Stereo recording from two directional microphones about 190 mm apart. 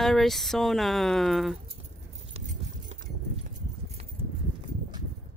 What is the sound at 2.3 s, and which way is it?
Clip-clop, 40° right (ahead or behind).